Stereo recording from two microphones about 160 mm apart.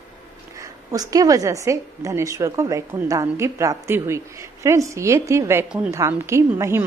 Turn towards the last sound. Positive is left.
turn(degrees=-15)  # may be behind; listen again after turning